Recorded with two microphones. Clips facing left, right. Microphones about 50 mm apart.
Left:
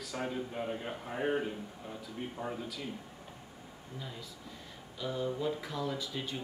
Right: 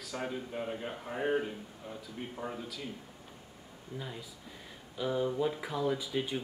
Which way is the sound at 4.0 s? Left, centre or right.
Centre.